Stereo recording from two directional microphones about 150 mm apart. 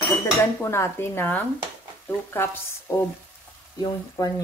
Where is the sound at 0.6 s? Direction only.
15° left (ahead or behind).